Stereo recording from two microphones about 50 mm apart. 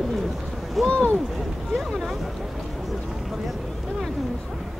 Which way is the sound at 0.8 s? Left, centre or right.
Left.